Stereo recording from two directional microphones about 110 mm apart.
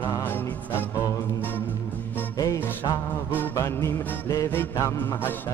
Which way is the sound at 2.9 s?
20° left (ahead or behind).